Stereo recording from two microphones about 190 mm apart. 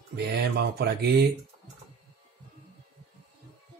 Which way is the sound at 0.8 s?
60° right (ahead or behind).